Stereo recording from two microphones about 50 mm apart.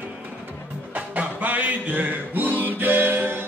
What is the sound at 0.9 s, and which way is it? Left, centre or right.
Music, right.